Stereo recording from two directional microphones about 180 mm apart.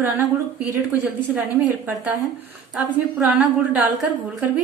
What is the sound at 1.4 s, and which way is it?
Speech, 10° right (ahead or behind).